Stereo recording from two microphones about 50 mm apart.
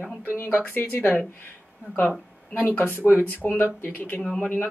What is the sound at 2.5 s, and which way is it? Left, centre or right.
Speech, left.